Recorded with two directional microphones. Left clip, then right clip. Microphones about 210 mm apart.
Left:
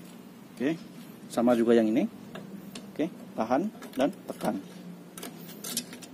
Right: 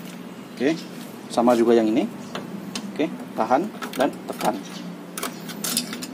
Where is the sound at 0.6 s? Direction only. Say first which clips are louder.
Right 8 dB; 20° left (ahead or behind); by 4.5 s 35° left (ahead or behind).